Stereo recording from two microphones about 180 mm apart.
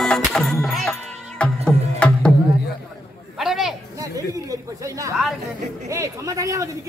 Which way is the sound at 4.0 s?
20° right (ahead or behind).